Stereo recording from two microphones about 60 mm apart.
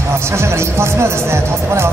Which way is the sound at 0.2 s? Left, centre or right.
Right.